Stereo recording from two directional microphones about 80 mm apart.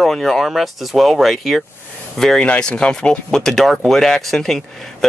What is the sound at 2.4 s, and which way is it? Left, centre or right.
Speech, centre.